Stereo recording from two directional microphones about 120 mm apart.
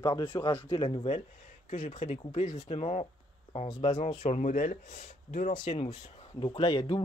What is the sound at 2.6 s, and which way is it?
Speech, 55° left (ahead or behind).